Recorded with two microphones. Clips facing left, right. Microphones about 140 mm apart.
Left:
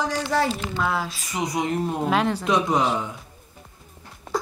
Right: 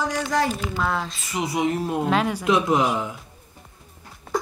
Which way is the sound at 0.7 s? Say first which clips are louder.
Even; 5° left (ahead or behind).